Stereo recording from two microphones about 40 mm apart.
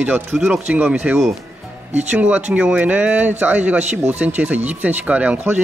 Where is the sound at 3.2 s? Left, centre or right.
Right.